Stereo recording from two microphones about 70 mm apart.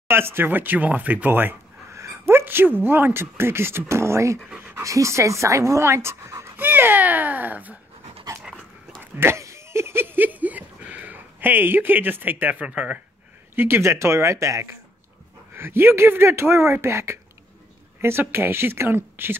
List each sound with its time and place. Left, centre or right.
0.1 s speech: right
1.9 s speech: right
4.6 s pant: right
4.8 s speech: right
6.5 s speech: right
9.0 s a sound: right
13.6 s speech: right
15.5 s speech: right
18.3 s speech: right